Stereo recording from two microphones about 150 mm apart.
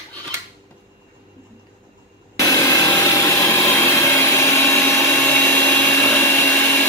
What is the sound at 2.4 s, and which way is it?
Wood, 20° left (ahead or behind).